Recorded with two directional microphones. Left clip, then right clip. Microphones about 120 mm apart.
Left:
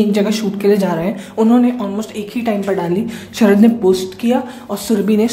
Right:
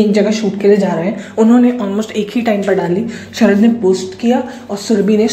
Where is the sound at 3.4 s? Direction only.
15° left (ahead or behind).